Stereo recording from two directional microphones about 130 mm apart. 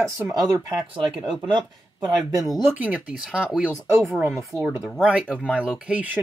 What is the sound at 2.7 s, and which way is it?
Speech, 10° right (ahead or behind).